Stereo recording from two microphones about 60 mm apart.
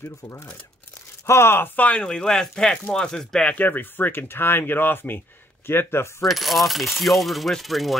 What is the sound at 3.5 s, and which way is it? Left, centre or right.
Speech, left.